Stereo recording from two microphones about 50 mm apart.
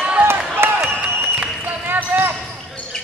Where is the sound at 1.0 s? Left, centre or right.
Right.